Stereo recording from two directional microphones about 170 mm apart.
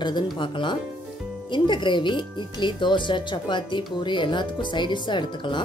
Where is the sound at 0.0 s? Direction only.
30° left (ahead or behind).